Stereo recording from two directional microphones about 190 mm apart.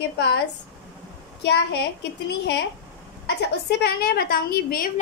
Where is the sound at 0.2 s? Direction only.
65° left (ahead or behind).